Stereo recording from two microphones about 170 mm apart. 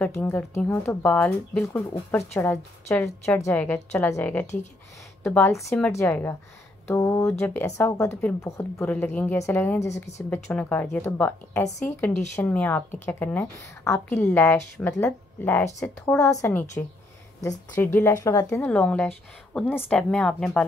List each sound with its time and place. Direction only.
0.2 s a woman's voice: 10° left (ahead or behind)
7.2 s speech: 5° left (ahead or behind)
18.7 s a woman's voice: 5° left (ahead or behind)